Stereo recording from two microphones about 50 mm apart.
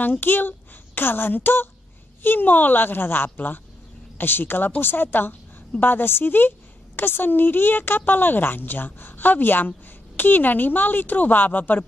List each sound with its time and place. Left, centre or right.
0.0 s a woman's voice: left